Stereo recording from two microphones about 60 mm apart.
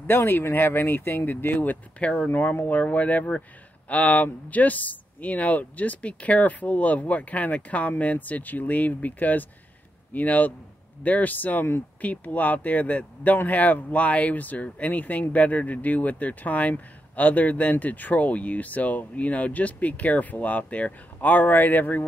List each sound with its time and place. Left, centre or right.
0.0 s speech: left